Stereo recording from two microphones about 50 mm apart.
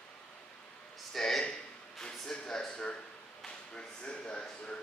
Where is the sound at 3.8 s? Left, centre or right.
Left.